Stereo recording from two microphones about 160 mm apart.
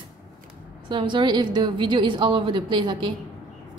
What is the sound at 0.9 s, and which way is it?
A woman's voice, 30° right (ahead or behind).